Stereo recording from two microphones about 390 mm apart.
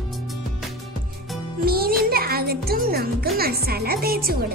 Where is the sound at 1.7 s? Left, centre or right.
Right.